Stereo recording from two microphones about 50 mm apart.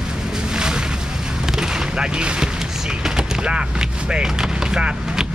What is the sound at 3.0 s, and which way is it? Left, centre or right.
Speech, centre.